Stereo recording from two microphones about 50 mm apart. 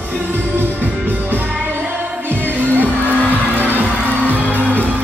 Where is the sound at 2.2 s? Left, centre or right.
Right.